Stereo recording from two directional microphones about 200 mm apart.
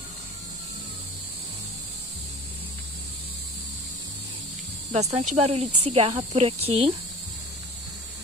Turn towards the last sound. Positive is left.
turn(degrees=-30)  # may be behind; listen again after turning